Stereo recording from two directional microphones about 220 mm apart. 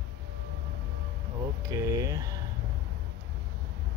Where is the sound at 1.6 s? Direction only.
15° right (ahead or behind).